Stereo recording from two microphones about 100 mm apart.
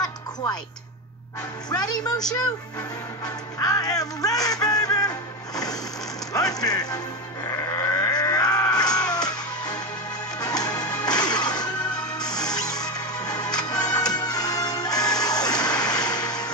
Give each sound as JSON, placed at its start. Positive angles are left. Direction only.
{"t": 0.0, "sound": "music", "side_deg": 45}
{"t": 1.7, "sound": "music", "side_deg": 45}
{"t": 3.5, "sound": "music", "side_deg": 40}
{"t": 6.3, "sound": "music", "side_deg": 40}
{"t": 7.4, "sound": "sheep", "side_deg": 35}
{"t": 8.1, "sound": "music", "side_deg": 45}
{"t": 10.4, "sound": "music", "side_deg": 40}